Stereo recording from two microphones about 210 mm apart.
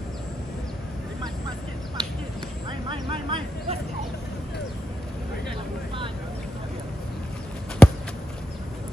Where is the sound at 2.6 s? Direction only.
25° right (ahead or behind).